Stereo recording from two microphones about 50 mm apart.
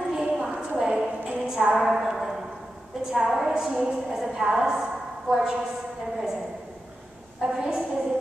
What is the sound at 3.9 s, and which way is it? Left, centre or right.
A woman's voice, centre.